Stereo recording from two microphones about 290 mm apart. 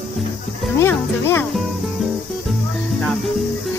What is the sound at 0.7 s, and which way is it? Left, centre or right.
Speech, centre.